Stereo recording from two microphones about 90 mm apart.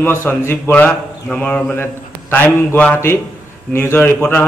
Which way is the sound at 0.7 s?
15° left (ahead or behind).